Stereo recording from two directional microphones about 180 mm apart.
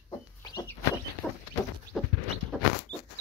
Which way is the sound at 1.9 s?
Centre (ahead or behind).